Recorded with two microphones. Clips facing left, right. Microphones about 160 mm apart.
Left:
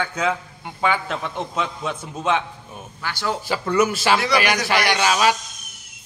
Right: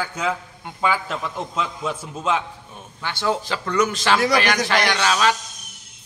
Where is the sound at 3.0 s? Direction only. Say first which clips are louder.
Right 3 dB; 20° right (ahead or behind).